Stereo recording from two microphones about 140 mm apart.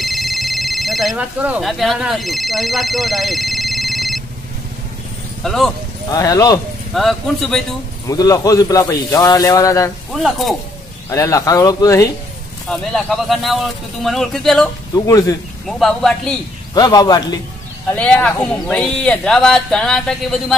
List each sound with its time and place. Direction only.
0.0 s telephone: centre (ahead or behind)
1.4 s speech: 5° right (ahead or behind)
5.4 s speech: centre (ahead or behind)
6.0 s speech: 25° left (ahead or behind)
6.9 s speech: centre (ahead or behind)
8.1 s speech: 25° left (ahead or behind)
10.1 s speech: centre (ahead or behind)
11.1 s speech: 25° left (ahead or behind)
12.6 s speech: centre (ahead or behind)
15.0 s speech: 25° left (ahead or behind)
15.6 s speech: centre (ahead or behind)
16.7 s speech: 30° left (ahead or behind)
17.9 s speech: 10° left (ahead or behind)